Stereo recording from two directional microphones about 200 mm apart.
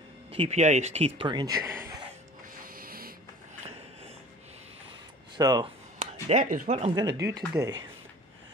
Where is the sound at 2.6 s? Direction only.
45° right (ahead or behind).